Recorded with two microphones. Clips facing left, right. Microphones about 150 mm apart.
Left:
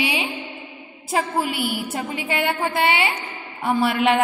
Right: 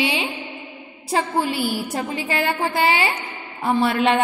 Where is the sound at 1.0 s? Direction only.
30° right (ahead or behind).